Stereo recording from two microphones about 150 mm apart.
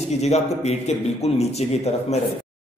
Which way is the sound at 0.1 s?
45° left (ahead or behind).